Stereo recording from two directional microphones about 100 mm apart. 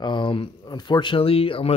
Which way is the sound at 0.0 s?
50° left (ahead or behind).